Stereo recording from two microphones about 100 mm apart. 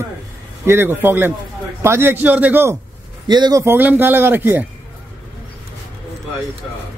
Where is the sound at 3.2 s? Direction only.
45° right (ahead or behind).